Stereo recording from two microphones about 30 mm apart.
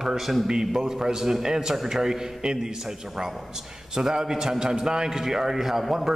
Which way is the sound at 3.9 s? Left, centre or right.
Centre.